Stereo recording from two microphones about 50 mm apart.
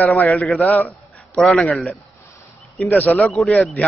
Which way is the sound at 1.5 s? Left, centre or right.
Centre.